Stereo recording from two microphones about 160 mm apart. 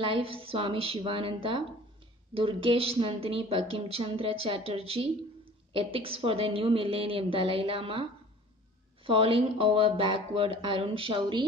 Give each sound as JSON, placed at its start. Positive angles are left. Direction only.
{"t": 0.0, "sound": "speech", "side_deg": -35}